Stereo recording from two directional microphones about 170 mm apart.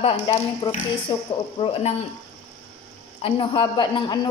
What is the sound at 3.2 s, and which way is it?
A woman's voice, 30° left (ahead or behind).